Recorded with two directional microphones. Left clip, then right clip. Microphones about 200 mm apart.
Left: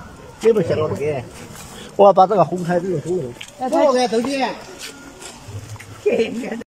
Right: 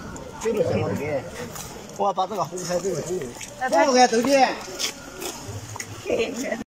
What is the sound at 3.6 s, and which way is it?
Speech, 20° left (ahead or behind).